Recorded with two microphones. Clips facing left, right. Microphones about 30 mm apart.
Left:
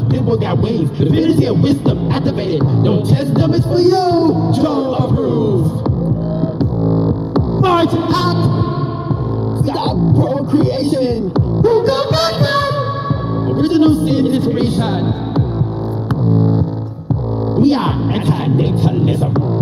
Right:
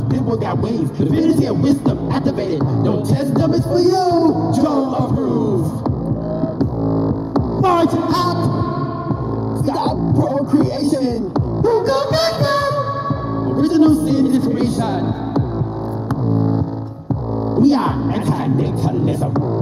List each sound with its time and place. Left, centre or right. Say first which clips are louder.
0.1 s speech: left 2 dB; left
6.6 s music: left 2 dB; left
9.7 s speech: left 1 dB; left
17.6 s speech: even; left